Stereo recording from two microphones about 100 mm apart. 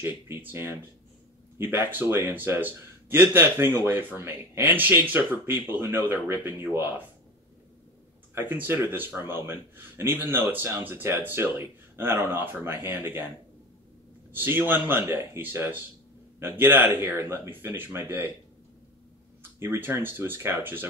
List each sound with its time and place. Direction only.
0.0 s speech: 20° right (ahead or behind)
8.4 s speech: 20° right (ahead or behind)
14.3 s speech: 20° right (ahead or behind)
19.6 s speech: 25° right (ahead or behind)